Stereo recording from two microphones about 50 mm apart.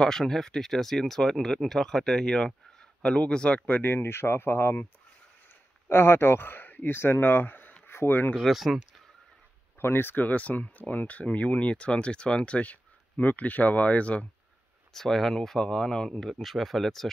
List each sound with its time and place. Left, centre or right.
0.0 s speech: centre
3.6 s speech: left
3.9 s speech: left
5.9 s speech: left
8.4 s speech: centre
9.8 s speech: left
10.2 s speech: left
14.9 s speech: centre